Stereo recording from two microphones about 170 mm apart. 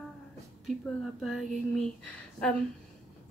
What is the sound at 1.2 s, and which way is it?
Speech, centre (ahead or behind).